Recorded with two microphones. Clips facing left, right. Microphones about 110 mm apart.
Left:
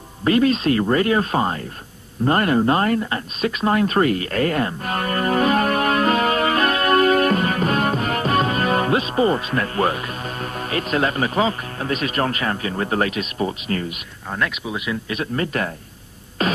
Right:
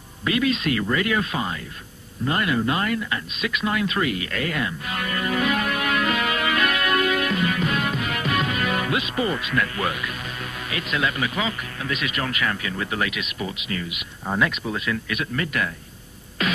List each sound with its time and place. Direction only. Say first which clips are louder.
0.2 s speech: left 6 dB; 40° left (ahead or behind)
14.6 s speech: left 1 dB; 10° left (ahead or behind)
15.0 s speech: left 3 dB; 35° left (ahead or behind)
16.4 s music: left 4 dB; 35° left (ahead or behind)